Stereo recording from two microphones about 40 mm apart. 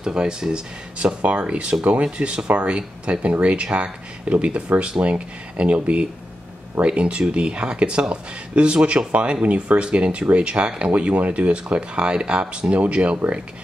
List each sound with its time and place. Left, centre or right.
0.0 s speech: right
5.0 s speech: right
5.6 s speech: right